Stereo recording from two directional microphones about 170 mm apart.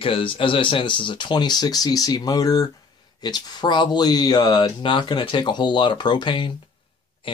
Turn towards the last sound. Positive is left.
turn(degrees=30)  # may be behind; listen again after turning